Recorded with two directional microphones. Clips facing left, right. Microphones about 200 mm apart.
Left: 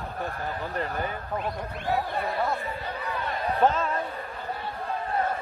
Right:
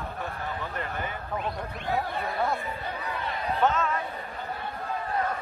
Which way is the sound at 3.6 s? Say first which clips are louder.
Left 2 dB; 30° left (ahead or behind).